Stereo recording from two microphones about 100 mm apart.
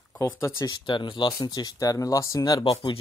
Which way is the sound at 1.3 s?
40° left (ahead or behind).